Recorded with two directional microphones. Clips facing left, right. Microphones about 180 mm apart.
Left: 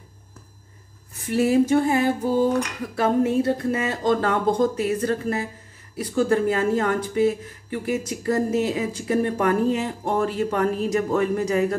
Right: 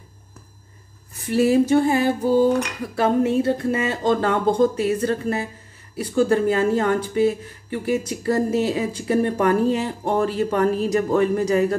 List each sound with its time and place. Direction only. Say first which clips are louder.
1.3 s speech: right 2 dB; 30° right (ahead or behind)